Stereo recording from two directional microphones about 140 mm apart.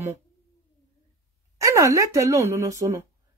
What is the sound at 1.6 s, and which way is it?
Speech, 20° right (ahead or behind).